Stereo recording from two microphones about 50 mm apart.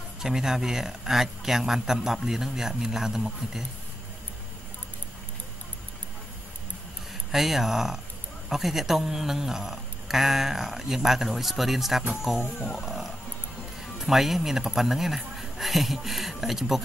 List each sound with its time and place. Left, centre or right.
0.2 s a man's voice: centre
7.2 s a man's voice: centre